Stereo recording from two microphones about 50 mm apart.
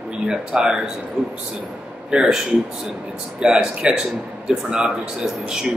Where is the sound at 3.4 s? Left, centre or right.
Centre.